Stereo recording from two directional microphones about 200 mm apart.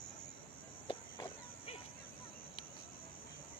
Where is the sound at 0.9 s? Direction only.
25° left (ahead or behind).